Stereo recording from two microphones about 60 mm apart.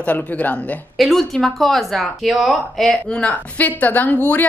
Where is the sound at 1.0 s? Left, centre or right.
Centre.